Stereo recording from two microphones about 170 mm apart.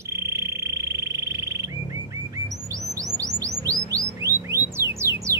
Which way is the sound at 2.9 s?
20° right (ahead or behind).